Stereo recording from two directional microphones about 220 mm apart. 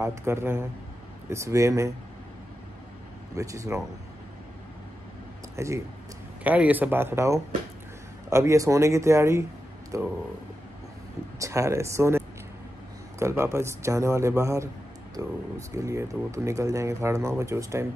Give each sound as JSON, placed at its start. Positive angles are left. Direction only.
{"t": 0.0, "sound": "speech", "side_deg": -10}
{"t": 3.3, "sound": "speech", "side_deg": -15}
{"t": 5.6, "sound": "speech", "side_deg": -15}
{"t": 11.3, "sound": "speech", "side_deg": -15}
{"t": 13.2, "sound": "speech", "side_deg": -10}